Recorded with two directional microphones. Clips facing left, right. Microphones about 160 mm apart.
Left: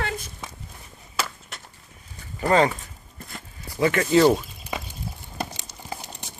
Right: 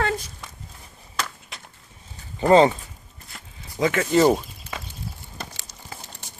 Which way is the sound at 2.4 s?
30° right (ahead or behind).